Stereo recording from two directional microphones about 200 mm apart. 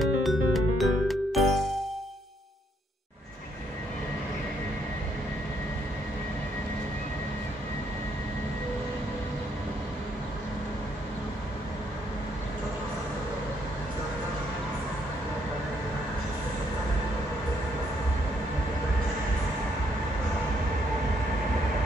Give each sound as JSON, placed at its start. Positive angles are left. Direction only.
{"t": 0.0, "sound": "music", "side_deg": 0}